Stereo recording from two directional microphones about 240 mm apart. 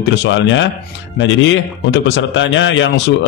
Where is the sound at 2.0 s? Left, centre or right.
Left.